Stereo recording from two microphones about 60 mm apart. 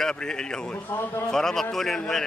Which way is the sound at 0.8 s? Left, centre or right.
Left.